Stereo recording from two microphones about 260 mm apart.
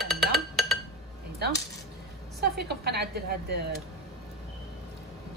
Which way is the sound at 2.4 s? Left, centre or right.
Right.